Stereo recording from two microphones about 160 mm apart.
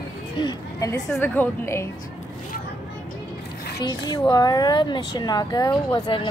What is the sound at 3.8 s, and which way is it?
A woman's voice, 25° left (ahead or behind).